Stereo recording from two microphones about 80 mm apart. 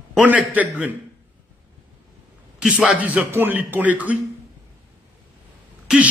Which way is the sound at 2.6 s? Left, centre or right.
Centre.